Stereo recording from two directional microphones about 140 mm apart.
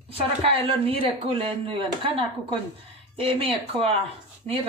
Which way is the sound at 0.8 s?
40° right (ahead or behind).